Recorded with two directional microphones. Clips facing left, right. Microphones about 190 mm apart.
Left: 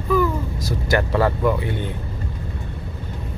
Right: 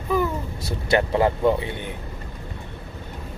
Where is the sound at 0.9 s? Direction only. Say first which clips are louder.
Even; 25° right (ahead or behind).